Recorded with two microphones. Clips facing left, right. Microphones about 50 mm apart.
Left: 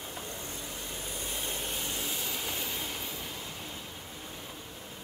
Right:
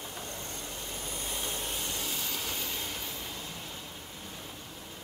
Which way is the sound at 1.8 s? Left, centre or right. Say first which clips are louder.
Even; centre.